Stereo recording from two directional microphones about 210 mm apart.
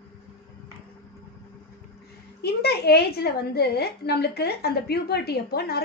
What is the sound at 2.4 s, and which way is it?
A woman's voice, 50° left (ahead or behind).